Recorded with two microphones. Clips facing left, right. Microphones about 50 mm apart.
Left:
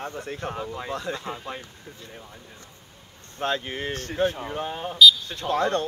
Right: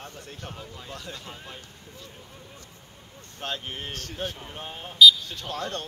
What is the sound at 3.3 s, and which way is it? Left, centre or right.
Speech, left.